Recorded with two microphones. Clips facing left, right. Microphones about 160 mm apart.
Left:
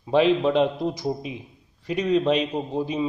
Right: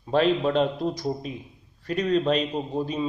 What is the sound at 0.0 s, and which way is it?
A man's voice, 15° left (ahead or behind).